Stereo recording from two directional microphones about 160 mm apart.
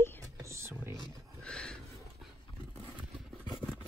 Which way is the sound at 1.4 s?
5° left (ahead or behind).